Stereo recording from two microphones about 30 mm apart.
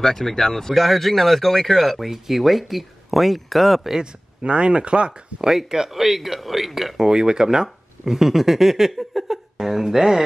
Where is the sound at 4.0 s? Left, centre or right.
Right.